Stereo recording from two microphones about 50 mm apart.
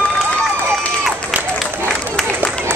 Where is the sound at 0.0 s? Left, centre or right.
Left.